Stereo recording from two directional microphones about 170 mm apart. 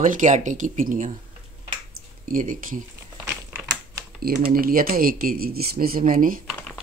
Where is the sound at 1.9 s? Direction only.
55° right (ahead or behind).